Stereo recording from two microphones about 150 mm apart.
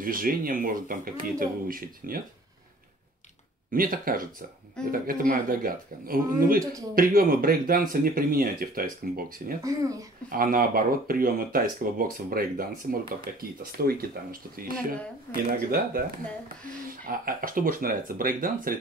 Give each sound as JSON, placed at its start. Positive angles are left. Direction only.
{"t": 0.0, "sound": "speech", "side_deg": -70}
{"t": 3.7, "sound": "speech", "side_deg": -70}
{"t": 9.6, "sound": "speech", "side_deg": -20}
{"t": 10.3, "sound": "speech", "side_deg": -70}